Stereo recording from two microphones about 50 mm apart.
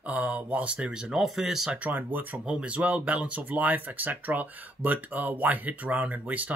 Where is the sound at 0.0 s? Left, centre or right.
Right.